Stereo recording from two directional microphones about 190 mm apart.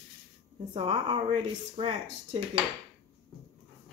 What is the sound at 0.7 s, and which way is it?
Speech, 30° right (ahead or behind).